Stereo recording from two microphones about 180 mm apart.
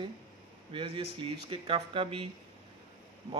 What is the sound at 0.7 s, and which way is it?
A man's voice, 30° right (ahead or behind).